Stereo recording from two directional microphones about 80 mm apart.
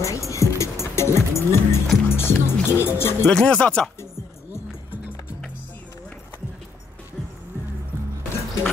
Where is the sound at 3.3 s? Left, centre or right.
Centre.